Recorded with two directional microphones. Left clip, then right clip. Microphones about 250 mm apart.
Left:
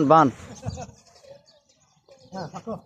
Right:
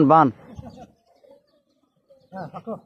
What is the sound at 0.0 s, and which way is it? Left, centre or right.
Speech, centre.